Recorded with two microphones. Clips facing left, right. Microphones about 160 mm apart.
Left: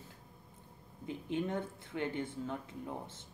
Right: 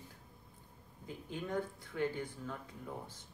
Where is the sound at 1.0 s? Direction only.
25° left (ahead or behind).